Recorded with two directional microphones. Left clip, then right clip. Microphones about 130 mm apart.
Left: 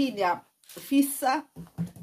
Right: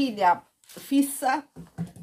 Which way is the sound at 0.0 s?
35° right (ahead or behind).